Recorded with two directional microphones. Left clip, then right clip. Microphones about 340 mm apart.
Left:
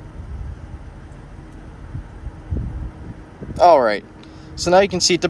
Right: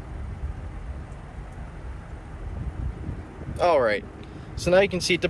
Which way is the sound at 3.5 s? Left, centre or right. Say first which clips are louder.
Left 8 dB; centre.